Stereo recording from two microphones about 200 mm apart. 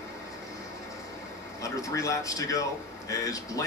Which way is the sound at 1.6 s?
15° left (ahead or behind).